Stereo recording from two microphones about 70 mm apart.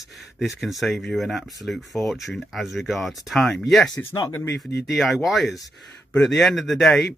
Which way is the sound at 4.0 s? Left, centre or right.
Left.